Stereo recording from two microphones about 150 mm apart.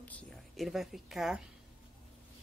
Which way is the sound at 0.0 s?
10° left (ahead or behind).